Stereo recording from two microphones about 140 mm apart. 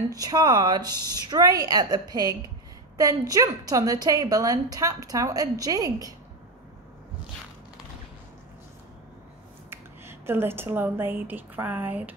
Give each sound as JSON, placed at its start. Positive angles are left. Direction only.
{"t": 0.1, "sound": "a woman's voice", "side_deg": -25}
{"t": 9.7, "sound": "speech", "side_deg": -15}